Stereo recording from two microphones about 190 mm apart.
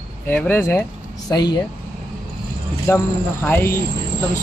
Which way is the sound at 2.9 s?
15° left (ahead or behind).